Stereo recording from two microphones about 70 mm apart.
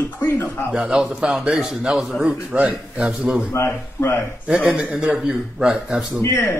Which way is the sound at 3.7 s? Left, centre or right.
Left.